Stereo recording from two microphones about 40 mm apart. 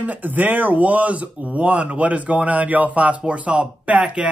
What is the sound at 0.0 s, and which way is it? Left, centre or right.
Speech, right.